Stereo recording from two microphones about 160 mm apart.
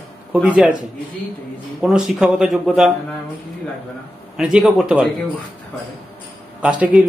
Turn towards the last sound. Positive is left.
turn(degrees=-5)  # may be behind; listen again after turning